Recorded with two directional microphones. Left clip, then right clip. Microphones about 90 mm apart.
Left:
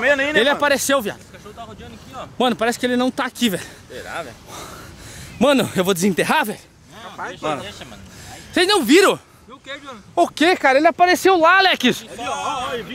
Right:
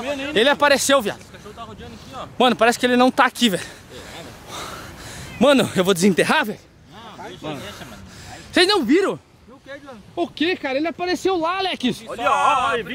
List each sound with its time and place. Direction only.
0.0 s a sound: 35° left (ahead or behind)
0.3 s speech: 10° right (ahead or behind)
2.1 s speech: 10° right (ahead or behind)
3.3 s speech: 5° right (ahead or behind)
4.5 s a sound: 10° right (ahead or behind)
5.4 s speech: 5° right (ahead or behind)
7.5 s speech: 15° right (ahead or behind)
8.5 s speech: 5° right (ahead or behind)
8.8 s speech: 20° left (ahead or behind)
10.4 s speech: 45° left (ahead or behind)
11.1 s speech: 30° left (ahead or behind)
12.2 s speech: 40° right (ahead or behind)